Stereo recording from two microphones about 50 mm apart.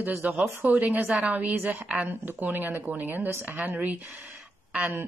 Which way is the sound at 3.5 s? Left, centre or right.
Right.